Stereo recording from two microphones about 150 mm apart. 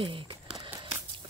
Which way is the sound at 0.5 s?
25° right (ahead or behind).